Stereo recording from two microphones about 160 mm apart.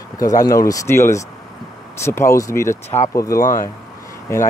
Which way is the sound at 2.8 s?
45° left (ahead or behind).